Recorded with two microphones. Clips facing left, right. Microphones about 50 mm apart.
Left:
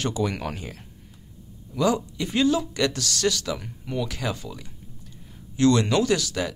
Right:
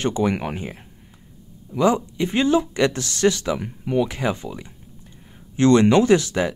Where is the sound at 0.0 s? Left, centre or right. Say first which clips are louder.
Right 5 dB; right.